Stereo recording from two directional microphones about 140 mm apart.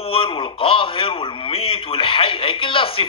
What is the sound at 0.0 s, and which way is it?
Speech, 40° left (ahead or behind).